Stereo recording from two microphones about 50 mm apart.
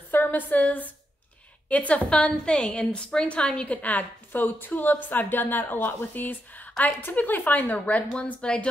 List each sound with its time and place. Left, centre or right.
0.1 s a woman's voice: left